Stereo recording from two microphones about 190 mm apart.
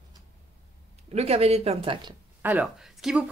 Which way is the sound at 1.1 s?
35° right (ahead or behind).